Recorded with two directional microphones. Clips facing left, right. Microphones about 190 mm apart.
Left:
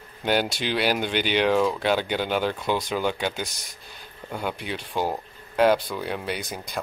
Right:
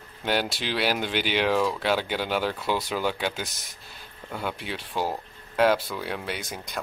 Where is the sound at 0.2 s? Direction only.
Centre (ahead or behind).